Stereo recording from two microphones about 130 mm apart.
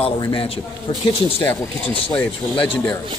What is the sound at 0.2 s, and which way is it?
Speech, 40° left (ahead or behind).